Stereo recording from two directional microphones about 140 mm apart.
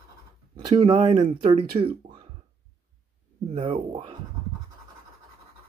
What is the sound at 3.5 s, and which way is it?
Speech, 40° right (ahead or behind).